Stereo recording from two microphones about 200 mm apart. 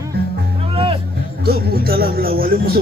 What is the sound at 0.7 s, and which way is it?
Music, 30° right (ahead or behind).